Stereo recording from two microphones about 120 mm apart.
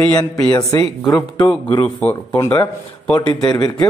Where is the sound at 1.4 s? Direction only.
45° left (ahead or behind).